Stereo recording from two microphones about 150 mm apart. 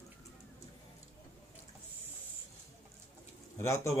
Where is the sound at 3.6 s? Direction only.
20° left (ahead or behind).